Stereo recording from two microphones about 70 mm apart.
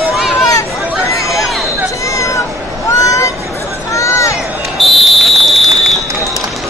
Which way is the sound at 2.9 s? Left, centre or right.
Left.